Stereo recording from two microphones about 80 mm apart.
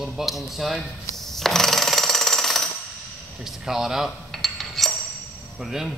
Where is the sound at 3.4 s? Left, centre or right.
Centre.